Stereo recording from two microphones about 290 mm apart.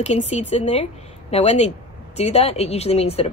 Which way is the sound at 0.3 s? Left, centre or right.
Left.